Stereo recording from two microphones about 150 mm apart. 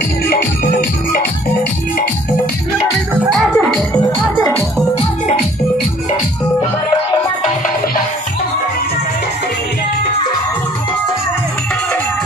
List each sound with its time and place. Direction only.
0.3 s music: 90° left
3.3 s music: centre (ahead or behind)
3.9 s music: 15° left (ahead or behind)
7.4 s music: 60° left (ahead or behind)